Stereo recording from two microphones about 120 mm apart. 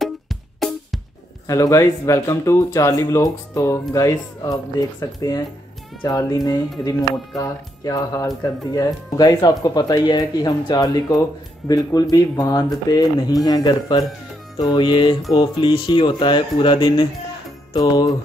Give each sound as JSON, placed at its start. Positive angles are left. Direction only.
{"t": 0.0, "sound": "music", "side_deg": 0}
{"t": 1.5, "sound": "speech", "side_deg": 25}
{"t": 17.7, "sound": "speech", "side_deg": 30}